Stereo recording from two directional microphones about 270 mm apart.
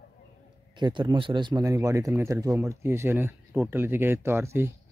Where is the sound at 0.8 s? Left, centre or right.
Centre.